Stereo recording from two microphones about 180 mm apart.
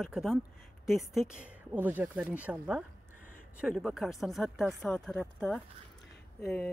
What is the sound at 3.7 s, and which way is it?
A woman's voice, centre (ahead or behind).